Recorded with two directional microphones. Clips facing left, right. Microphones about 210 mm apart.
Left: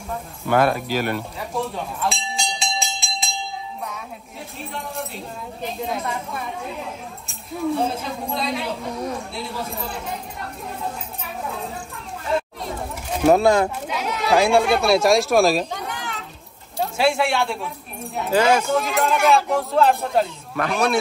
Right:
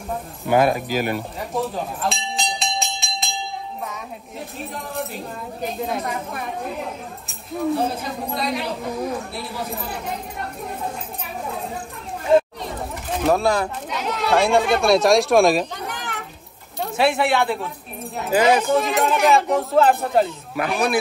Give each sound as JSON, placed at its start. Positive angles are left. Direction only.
{"t": 0.5, "sound": "speech", "side_deg": -10}
{"t": 0.9, "sound": "bell", "side_deg": -5}
{"t": 5.6, "sound": "speech", "side_deg": 0}
{"t": 7.2, "sound": "speech", "side_deg": 0}
{"t": 12.6, "sound": "chatter", "side_deg": 0}
{"t": 13.3, "sound": "speech", "side_deg": 20}
{"t": 13.8, "sound": "speech", "side_deg": 0}
{"t": 16.9, "sound": "speech", "side_deg": 0}